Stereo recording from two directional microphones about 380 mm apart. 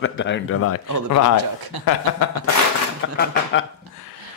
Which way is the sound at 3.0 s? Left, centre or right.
Left.